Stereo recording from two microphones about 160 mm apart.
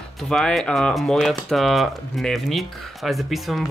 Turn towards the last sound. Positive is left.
turn(degrees=0)  # may be behind; listen again after turning